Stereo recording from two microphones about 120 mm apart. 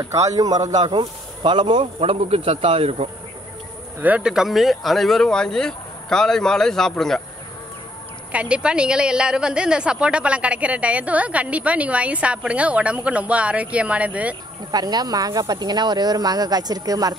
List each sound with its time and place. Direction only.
0.0 s speech: 30° right (ahead or behind); by 3.1 s 55° right (ahead or behind)
4.0 s speech: 10° right (ahead or behind)
8.3 s a woman's voice: 10° right (ahead or behind)
14.7 s speech: 35° right (ahead or behind)